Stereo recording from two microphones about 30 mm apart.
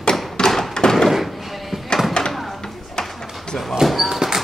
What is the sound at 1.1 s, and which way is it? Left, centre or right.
Door, centre.